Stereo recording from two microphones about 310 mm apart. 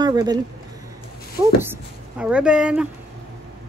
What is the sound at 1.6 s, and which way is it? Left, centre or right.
Speech, centre.